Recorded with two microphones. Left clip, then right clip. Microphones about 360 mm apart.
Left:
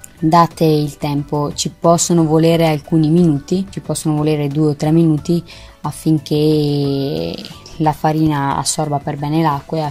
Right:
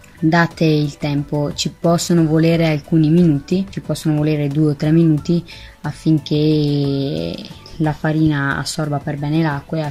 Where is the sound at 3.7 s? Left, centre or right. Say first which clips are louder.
Left 1 dB; left.